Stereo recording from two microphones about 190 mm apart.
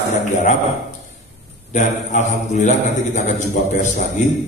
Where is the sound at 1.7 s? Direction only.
40° left (ahead or behind).